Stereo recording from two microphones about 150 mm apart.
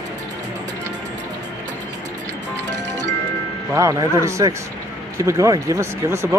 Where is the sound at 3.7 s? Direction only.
20° right (ahead or behind).